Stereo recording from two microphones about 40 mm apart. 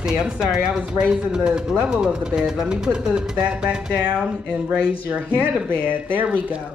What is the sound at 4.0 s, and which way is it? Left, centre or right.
Speech, right.